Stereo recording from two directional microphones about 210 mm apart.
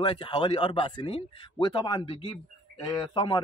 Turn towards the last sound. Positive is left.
turn(degrees=20)  # may be behind; listen again after turning